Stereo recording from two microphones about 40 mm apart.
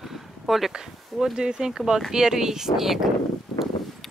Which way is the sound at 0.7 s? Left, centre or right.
Centre.